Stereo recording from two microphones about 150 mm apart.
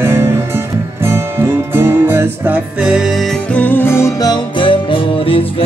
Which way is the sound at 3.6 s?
15° left (ahead or behind).